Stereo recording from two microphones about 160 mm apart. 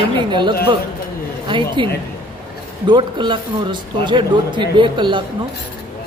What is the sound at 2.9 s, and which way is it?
Speech, 30° right (ahead or behind).